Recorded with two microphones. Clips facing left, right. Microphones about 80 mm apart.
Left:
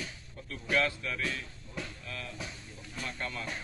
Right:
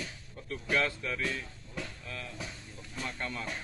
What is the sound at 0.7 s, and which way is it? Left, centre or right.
Speech, right.